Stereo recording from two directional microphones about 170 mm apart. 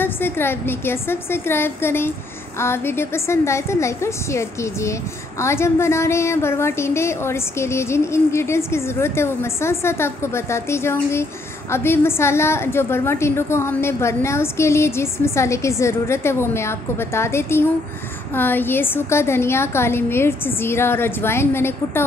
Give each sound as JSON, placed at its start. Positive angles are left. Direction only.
{"t": 0.0, "sound": "a woman's voice", "side_deg": 15}